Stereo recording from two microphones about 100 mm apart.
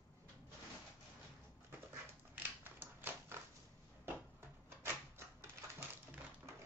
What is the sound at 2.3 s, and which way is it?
Typewriter, 20° right (ahead or behind).